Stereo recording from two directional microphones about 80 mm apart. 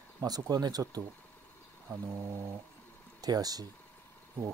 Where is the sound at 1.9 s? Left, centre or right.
Right.